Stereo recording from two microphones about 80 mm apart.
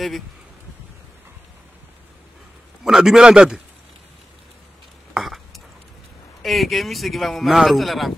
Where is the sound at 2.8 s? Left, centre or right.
Centre.